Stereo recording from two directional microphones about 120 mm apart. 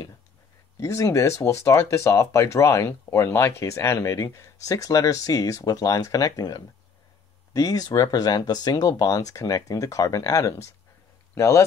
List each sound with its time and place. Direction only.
0.7 s speech: 25° left (ahead or behind)